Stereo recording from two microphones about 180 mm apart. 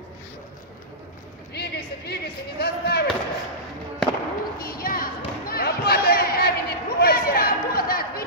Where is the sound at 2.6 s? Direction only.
65° left (ahead or behind).